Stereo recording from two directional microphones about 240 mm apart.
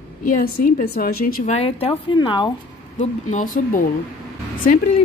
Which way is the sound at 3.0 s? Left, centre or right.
Left.